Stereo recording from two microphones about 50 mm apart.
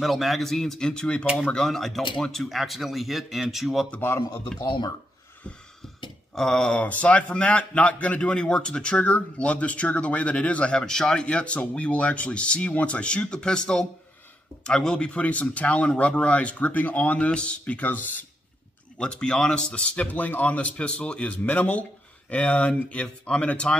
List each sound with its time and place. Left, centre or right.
0.0 s a man's voice: centre
6.3 s speech: centre
6.8 s a man's voice: left
10.8 s a man's voice: centre; by 18.2 s left
18.9 s a man's voice: centre
20.0 s a man's voice: left